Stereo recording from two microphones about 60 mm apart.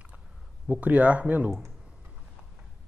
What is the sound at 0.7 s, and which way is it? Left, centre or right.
Speech, right.